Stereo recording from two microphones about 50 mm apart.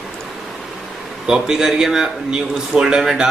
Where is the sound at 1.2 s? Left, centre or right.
Centre.